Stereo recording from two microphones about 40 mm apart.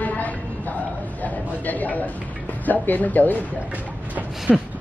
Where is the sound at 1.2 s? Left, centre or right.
Left.